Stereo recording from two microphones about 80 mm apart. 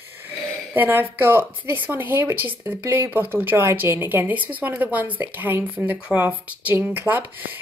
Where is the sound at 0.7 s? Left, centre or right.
Right.